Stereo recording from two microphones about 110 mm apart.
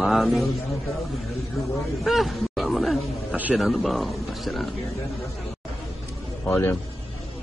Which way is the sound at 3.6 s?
Centre (ahead or behind).